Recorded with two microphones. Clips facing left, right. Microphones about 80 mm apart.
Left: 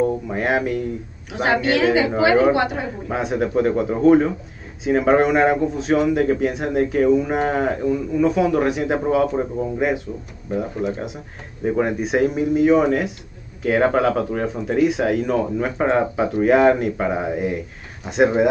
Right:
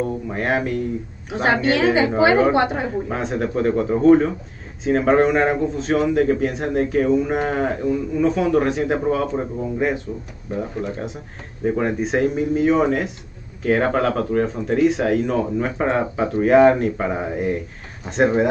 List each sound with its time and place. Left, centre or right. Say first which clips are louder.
0.0 s speech: left 3 dB; centre
1.3 s a woman's voice: even; right
3.1 s speech: left 1 dB; centre